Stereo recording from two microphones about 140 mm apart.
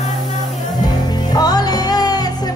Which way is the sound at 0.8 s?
30° left (ahead or behind).